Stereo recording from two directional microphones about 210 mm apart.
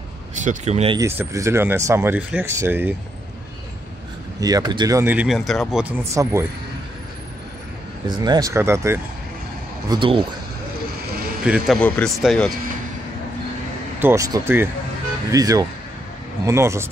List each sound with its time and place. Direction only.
0.4 s speech: 35° right (ahead or behind)
0.9 s speech: 15° right (ahead or behind)
4.4 s speech: 15° right (ahead or behind)
8.2 s speech: 15° right (ahead or behind)
9.8 s speech: 25° right (ahead or behind)
11.4 s speech: 5° right (ahead or behind)
13.9 s speech: 10° right (ahead or behind)